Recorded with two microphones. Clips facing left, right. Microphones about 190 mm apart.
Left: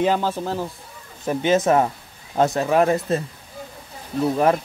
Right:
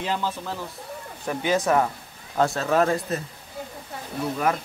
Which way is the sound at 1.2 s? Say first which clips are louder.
Left 5 dB; 20° left (ahead or behind).